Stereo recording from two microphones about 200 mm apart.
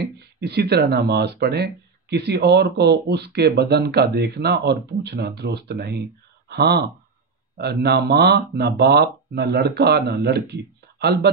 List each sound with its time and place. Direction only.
0.0 s speech: 55° right (ahead or behind)